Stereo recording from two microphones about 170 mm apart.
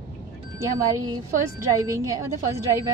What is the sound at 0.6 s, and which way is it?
A woman's voice, 20° right (ahead or behind).